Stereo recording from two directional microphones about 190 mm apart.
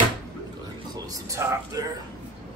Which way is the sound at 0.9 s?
20° right (ahead or behind).